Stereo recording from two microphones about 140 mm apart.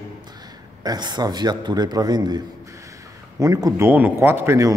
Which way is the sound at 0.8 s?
30° right (ahead or behind).